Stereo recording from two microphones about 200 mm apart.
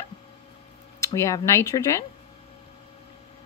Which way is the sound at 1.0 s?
15° left (ahead or behind).